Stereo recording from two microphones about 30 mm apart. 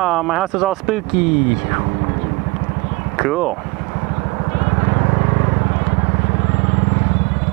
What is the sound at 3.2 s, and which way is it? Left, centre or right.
Speech, centre.